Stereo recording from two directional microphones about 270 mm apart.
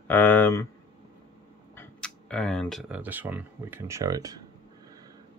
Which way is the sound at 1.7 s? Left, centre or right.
Centre.